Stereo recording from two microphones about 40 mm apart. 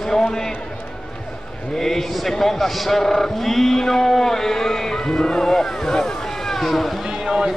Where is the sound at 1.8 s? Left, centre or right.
Centre.